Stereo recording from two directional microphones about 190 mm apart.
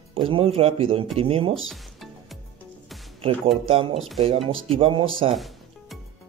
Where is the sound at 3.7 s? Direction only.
30° right (ahead or behind).